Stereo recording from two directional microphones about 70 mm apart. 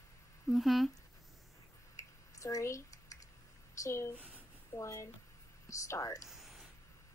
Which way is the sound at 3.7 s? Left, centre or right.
Left.